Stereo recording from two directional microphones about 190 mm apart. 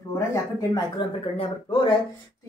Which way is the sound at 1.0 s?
25° left (ahead or behind).